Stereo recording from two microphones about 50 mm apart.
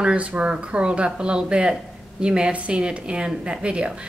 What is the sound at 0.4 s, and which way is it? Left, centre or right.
A woman's voice, right.